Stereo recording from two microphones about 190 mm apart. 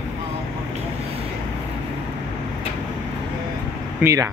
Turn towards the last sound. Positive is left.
turn(degrees=-15)  # may be behind; listen again after turning